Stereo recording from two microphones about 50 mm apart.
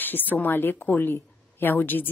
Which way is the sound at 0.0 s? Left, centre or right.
Left.